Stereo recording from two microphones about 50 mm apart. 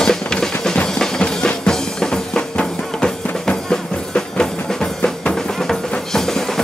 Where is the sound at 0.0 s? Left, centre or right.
Centre.